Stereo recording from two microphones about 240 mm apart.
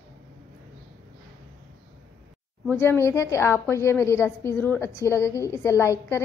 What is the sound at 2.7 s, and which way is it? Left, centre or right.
A woman's voice, centre.